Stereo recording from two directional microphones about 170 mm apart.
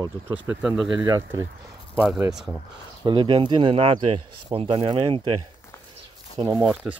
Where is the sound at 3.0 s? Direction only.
30° right (ahead or behind).